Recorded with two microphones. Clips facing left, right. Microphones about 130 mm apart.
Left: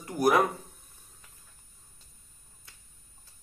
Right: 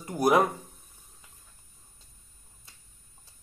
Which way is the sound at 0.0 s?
20° right (ahead or behind).